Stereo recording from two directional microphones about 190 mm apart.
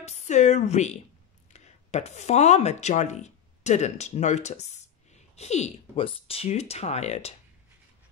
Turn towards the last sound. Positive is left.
turn(degrees=35)  # may be behind; listen again after turning